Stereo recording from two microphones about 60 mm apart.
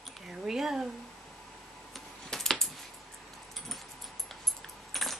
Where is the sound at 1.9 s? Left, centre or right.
Centre.